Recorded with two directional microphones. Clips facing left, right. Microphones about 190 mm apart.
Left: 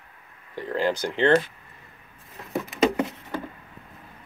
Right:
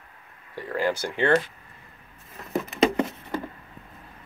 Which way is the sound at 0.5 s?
20° left (ahead or behind).